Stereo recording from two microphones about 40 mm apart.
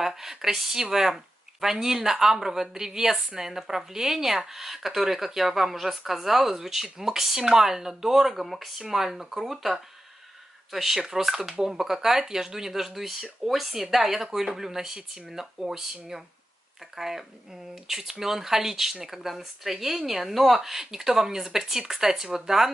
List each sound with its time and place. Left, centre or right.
0.0 s speech: centre